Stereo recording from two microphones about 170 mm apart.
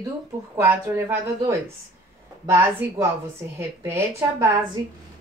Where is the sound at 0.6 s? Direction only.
15° right (ahead or behind).